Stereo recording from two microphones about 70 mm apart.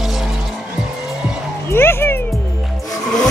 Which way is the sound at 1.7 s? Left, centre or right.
Left.